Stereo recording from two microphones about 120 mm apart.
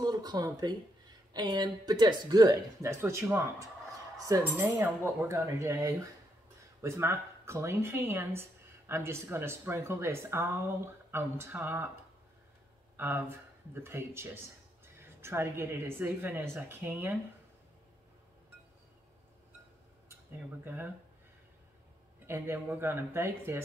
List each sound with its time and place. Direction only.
0.0 s speech: 35° right (ahead or behind); by 17.2 s 20° right (ahead or behind)
20.6 s speech: 15° right (ahead or behind)
22.2 s speech: 20° right (ahead or behind)